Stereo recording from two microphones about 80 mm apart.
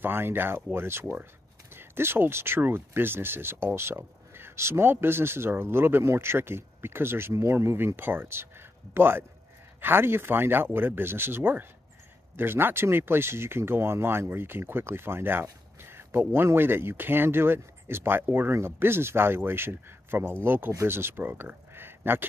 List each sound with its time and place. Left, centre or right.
0.0 s speech: right
15.8 s a sound: right
16.3 s speech: right